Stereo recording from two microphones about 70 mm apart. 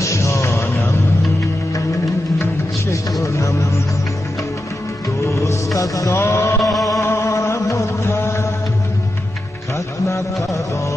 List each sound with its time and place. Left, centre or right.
0.0 s music: left
2.3 s music: left
5.2 s music: left
6.1 s a sound: left
6.6 s a sound: centre
7.0 s chant: left